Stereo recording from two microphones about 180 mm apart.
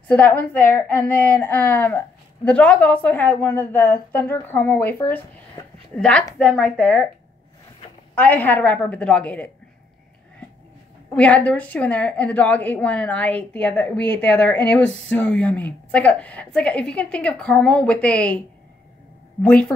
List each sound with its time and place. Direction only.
0.1 s a woman's voice: 10° left (ahead or behind)
8.1 s a woman's voice: 10° left (ahead or behind)
11.1 s a woman's voice: 10° left (ahead or behind)
19.4 s speech: 5° left (ahead or behind)